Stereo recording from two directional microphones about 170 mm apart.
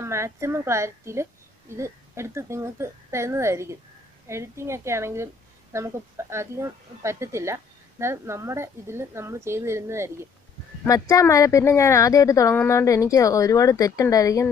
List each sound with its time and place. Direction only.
0.0 s a woman's voice: 15° right (ahead or behind)
10.9 s speech: 20° left (ahead or behind)